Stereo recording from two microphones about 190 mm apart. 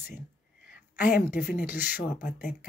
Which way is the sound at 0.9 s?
55° left (ahead or behind).